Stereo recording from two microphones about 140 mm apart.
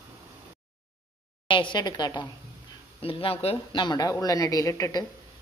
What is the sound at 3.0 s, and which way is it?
Speech, 40° left (ahead or behind).